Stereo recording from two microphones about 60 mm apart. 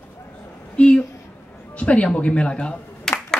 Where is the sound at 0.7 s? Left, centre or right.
Centre.